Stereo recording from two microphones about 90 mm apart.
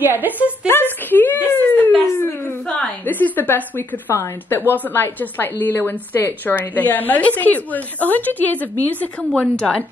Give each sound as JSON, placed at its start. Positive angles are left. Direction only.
{"t": 0.0, "sound": "speech", "side_deg": -20}
{"t": 1.1, "sound": "a sound", "side_deg": 20}
{"t": 2.6, "sound": "a woman's voice", "side_deg": 20}